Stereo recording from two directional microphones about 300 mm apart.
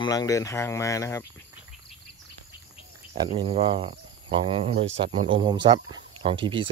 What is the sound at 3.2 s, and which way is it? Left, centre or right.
Speech, centre.